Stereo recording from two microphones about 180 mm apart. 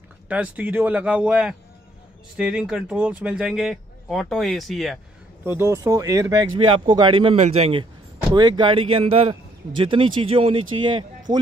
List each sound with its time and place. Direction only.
0.3 s a man's voice: 10° right (ahead or behind)
5.4 s speech: 15° right (ahead or behind)